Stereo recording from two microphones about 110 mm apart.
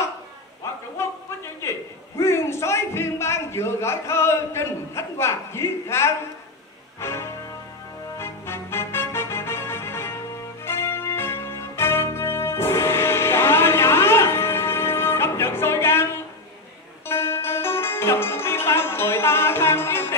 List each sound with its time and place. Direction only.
1.0 s a sound: 25° left (ahead or behind)
1.6 s a man's voice: 25° left (ahead or behind)
7.0 s music: 25° left (ahead or behind)
17.1 s music: 20° left (ahead or behind)